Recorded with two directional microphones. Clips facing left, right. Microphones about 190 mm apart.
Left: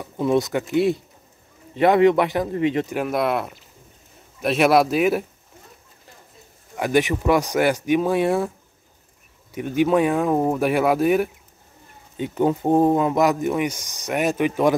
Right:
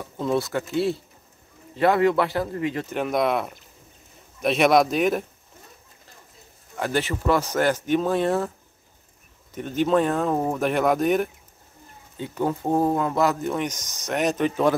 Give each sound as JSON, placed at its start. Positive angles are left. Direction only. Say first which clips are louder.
{"t": 0.0, "sound": "speech", "louder": "left 4 dB", "side_deg": 15}
{"t": 2.9, "sound": "speech", "louder": "left 1 dB", "side_deg": 5}
{"t": 6.8, "sound": "speech", "louder": "left 5 dB", "side_deg": 15}
{"t": 9.5, "sound": "speech", "louder": "left 3 dB", "side_deg": 10}
{"t": 12.2, "sound": "speech", "louder": "left 5 dB", "side_deg": 20}